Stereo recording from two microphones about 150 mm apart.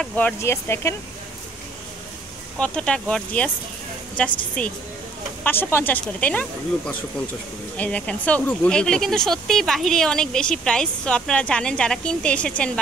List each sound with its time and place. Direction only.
0.0 s speech: 10° left (ahead or behind)
2.6 s speech: 5° left (ahead or behind)
5.4 s speech: 15° left (ahead or behind)
7.7 s speech: 10° left (ahead or behind)